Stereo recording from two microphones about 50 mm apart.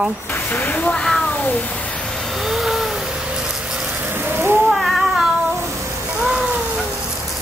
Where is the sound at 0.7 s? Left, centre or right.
Left.